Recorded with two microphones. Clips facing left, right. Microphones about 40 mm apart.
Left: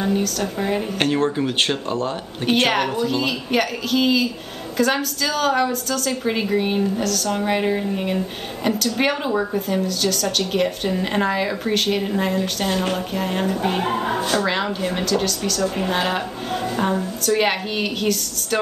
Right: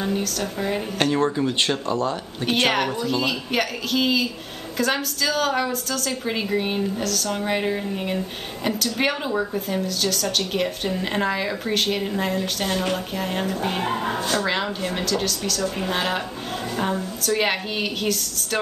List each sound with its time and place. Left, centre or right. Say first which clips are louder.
0.0 s a woman's voice: left 3 dB; centre
0.9 s speech: right 1 dB; left
1.9 s speech: even; left
2.6 s a woman's voice: even; centre